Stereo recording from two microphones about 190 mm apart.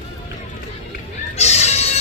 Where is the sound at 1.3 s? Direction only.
35° left (ahead or behind).